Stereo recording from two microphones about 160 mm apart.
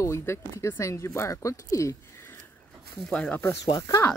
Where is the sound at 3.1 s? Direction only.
5° left (ahead or behind).